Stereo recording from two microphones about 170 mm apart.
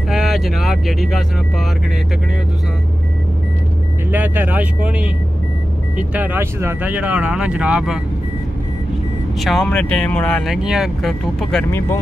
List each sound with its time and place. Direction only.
0.1 s speech: centre (ahead or behind)
4.1 s speech: 10° right (ahead or behind)
9.4 s speech: centre (ahead or behind)